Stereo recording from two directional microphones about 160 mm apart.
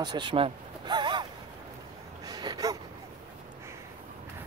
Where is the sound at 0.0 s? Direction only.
30° right (ahead or behind).